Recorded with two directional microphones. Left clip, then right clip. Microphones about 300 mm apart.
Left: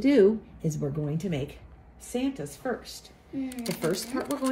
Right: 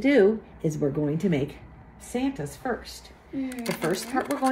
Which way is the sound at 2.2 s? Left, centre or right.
Centre.